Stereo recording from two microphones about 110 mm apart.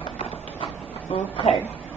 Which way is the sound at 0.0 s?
55° left (ahead or behind).